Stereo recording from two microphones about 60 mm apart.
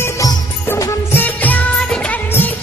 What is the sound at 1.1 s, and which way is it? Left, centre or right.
Music of bollywood, left.